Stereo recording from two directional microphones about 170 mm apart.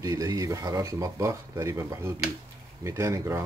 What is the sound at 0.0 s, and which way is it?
Speech, 20° right (ahead or behind).